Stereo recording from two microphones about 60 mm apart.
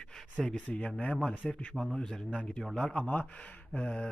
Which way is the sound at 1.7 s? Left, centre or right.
Centre.